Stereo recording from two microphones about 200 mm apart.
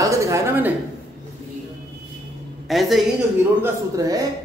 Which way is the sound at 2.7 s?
Centre (ahead or behind).